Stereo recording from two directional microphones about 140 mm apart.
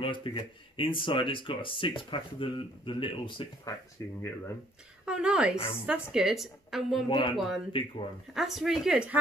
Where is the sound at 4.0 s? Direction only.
25° left (ahead or behind).